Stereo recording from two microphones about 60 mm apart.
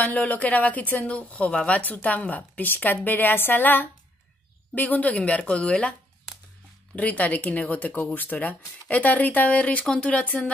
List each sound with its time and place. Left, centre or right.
0.0 s speech: left
1.8 s a woman's voice: left
7.0 s speech: left